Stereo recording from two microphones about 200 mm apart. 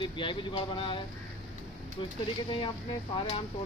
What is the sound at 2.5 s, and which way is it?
Speech, 25° left (ahead or behind).